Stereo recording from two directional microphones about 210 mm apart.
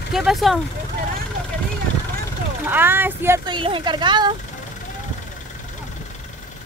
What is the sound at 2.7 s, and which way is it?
Speech, 10° right (ahead or behind).